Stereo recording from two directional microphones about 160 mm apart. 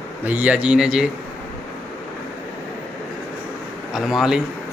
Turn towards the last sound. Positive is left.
turn(degrees=-5)  # may be behind; listen again after turning